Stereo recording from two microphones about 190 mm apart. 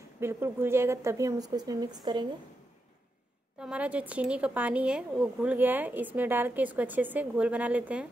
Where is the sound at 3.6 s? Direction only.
5° right (ahead or behind).